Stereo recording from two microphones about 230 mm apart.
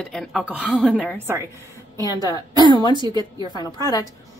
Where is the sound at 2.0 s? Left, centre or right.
Centre.